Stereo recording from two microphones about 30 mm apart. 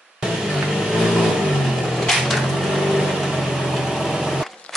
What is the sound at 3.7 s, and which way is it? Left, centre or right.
Vehicle, centre.